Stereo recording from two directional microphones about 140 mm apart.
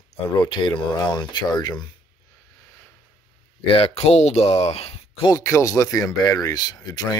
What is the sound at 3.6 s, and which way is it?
Speech, 40° left (ahead or behind).